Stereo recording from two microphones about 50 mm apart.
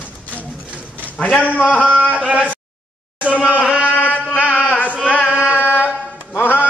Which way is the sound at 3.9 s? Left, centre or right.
Left.